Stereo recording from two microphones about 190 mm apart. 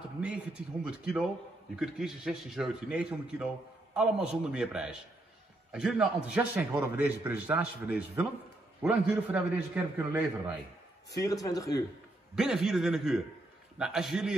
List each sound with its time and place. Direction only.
0.2 s a man's voice: 5° right (ahead or behind)
11.4 s speech: 20° left (ahead or behind)
12.4 s a man's voice: 5° right (ahead or behind)